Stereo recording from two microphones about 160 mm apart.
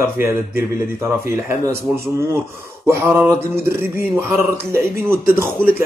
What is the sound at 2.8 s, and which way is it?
Speech, 15° right (ahead or behind).